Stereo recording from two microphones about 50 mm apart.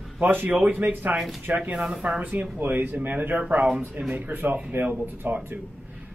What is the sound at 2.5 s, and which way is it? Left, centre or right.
Speech, right.